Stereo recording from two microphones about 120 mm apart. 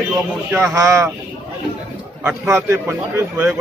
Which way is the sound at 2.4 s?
20° right (ahead or behind).